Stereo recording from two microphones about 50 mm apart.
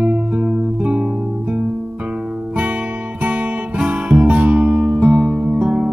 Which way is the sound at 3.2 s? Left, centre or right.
Right.